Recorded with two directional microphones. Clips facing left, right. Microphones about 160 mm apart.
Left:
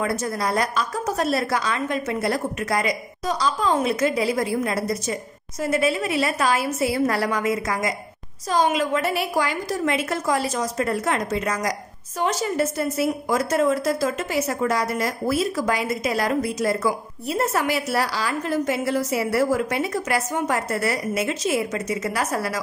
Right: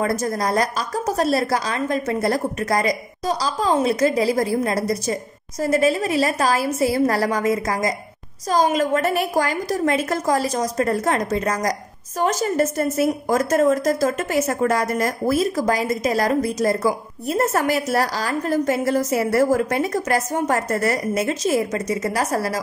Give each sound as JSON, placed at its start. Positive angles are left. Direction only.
{"t": 0.0, "sound": "a woman's voice", "side_deg": -40}